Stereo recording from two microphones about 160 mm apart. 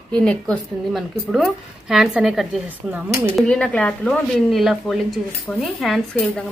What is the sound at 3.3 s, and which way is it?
A woman's voice, 5° left (ahead or behind).